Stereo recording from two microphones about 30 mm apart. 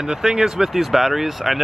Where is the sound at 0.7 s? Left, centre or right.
Centre.